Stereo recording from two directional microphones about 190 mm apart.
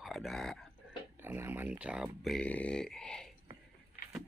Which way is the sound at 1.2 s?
10° right (ahead or behind).